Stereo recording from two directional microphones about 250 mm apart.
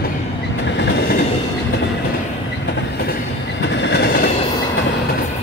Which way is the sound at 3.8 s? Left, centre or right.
Left.